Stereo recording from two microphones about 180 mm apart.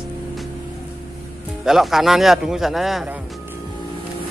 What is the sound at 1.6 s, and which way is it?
Speech, centre (ahead or behind).